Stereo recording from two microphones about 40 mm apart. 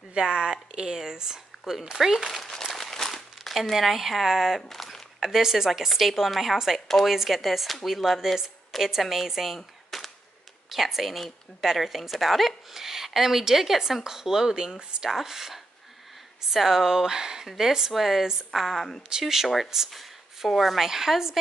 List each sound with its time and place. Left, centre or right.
0.1 s a woman's voice: right
2.2 s crumpling: centre
3.7 s speech: centre
4.6 s a sound: centre
5.2 s a woman's voice: centre
9.8 s cap gun: centre
10.7 s a woman's voice: centre; by 15.0 s right
15.0 s a woman's voice: centre